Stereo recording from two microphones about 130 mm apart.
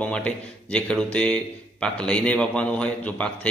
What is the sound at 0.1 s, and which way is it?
A man's voice, 10° left (ahead or behind).